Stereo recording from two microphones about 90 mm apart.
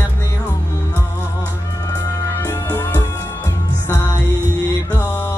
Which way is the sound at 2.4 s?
30° left (ahead or behind).